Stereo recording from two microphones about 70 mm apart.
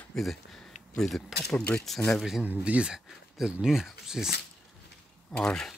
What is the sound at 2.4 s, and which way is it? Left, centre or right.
Speech, centre.